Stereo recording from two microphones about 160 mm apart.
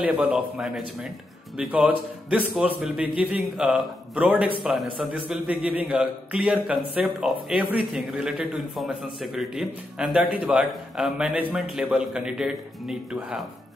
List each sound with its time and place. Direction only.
0.0 s a man's voice: 5° right (ahead or behind)